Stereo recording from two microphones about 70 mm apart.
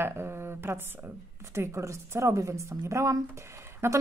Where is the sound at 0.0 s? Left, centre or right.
Right.